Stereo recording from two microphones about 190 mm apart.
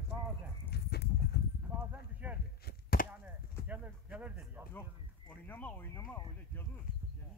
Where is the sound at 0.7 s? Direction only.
60° left (ahead or behind).